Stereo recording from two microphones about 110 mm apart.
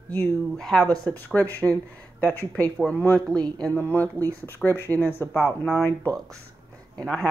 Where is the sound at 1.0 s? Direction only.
15° left (ahead or behind).